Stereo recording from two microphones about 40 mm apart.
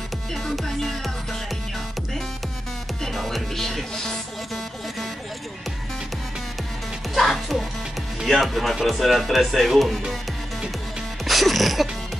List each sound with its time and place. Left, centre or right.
0.3 s music: centre
3.0 s music: centre
7.2 s music: centre
8.3 s speech: centre
11.2 s music: centre